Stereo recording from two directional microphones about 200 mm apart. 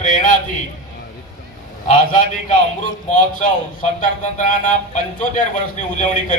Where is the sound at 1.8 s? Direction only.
35° left (ahead or behind).